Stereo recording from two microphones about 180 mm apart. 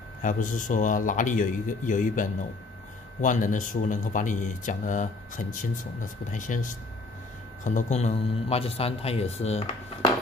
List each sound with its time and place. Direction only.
0.2 s speech: 45° left (ahead or behind)